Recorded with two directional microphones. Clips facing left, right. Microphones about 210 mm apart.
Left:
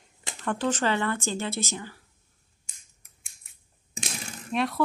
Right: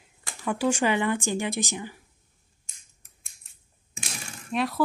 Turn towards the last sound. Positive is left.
turn(degrees=0)  # may be behind; listen again after turning